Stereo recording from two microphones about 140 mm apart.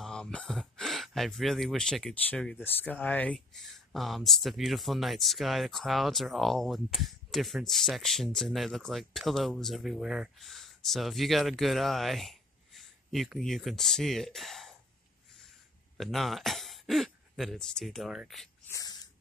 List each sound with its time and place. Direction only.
0.0 s speech: 5° left (ahead or behind)
16.0 s speech: centre (ahead or behind)
18.7 s a sound: 25° left (ahead or behind)